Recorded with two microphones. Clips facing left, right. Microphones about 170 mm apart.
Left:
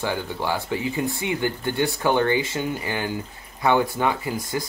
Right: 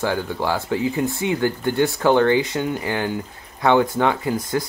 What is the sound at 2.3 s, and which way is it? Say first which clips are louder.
Speech: right 4 dB; 20° right (ahead or behind).